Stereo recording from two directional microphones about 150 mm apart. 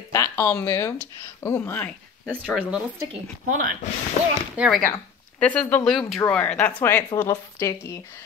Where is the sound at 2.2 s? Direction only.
10° right (ahead or behind).